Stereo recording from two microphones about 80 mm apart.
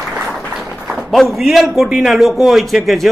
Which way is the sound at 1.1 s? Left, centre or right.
Centre.